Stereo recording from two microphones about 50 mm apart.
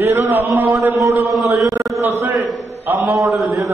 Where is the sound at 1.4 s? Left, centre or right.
Right.